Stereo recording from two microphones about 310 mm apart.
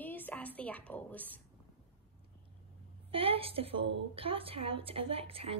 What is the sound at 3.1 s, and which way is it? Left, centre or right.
A woman's voice, centre.